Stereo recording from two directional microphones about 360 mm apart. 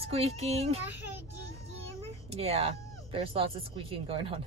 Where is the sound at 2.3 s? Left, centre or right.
Centre.